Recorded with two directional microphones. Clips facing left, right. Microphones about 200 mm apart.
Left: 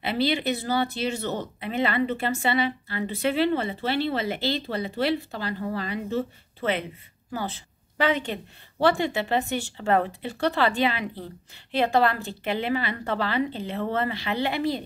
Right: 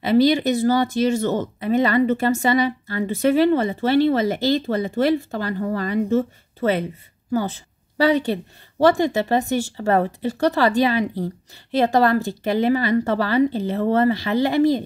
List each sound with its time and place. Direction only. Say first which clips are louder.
0.0 s a woman's voice: right 9 dB; 45° right (ahead or behind)